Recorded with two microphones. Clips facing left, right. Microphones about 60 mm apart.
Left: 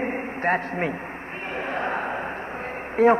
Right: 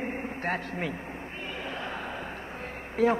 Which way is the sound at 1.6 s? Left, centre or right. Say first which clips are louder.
Left 10 dB; left.